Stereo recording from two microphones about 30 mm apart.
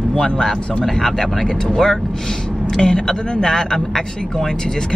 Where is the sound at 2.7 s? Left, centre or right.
Left.